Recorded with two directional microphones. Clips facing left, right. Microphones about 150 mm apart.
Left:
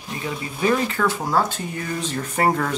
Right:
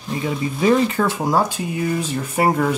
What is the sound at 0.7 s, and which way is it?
Speech, 15° right (ahead or behind).